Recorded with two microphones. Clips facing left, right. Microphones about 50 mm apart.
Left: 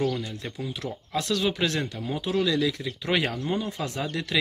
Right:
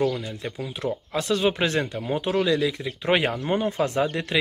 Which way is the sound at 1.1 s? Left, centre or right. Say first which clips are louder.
Right 2 dB; right.